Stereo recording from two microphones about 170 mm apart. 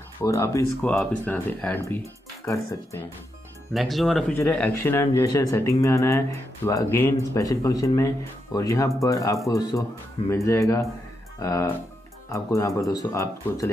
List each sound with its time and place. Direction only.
0.2 s speech: 15° left (ahead or behind)
3.7 s speech: centre (ahead or behind)
4.3 s speech: 10° left (ahead or behind)